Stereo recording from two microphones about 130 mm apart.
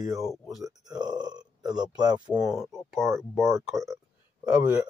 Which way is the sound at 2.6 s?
Centre (ahead or behind).